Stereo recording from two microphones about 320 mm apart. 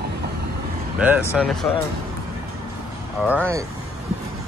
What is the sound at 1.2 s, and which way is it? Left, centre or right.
Speech, centre.